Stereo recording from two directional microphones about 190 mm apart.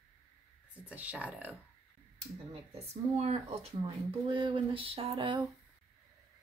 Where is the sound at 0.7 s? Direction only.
5° right (ahead or behind).